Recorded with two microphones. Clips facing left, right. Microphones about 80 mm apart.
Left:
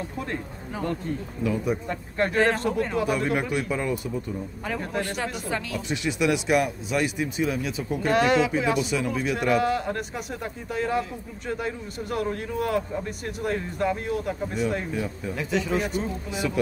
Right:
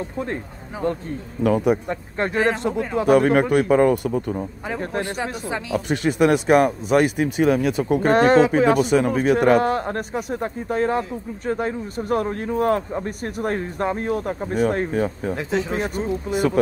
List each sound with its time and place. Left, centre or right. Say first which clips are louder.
0.8 s speech: right 6 dB; right
1.4 s speech: right 8 dB; right
1.9 s speech: right 2 dB; right
3.1 s speech: right 9 dB; right
5.0 s speech: right 3 dB; centre
5.9 s speech: right 7 dB; right
15.5 s speech: even; right